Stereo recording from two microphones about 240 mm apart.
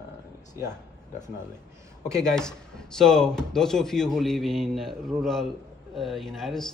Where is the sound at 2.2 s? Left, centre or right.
Centre.